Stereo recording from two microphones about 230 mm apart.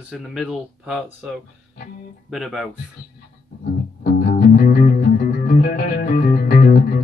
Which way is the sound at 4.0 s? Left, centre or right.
Left.